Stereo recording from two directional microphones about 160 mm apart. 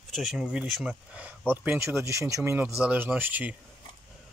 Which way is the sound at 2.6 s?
5° right (ahead or behind).